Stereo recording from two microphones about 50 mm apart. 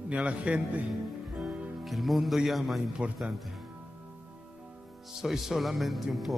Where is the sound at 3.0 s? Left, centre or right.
Right.